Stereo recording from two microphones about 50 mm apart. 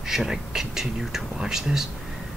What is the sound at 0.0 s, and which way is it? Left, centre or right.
Speech, centre.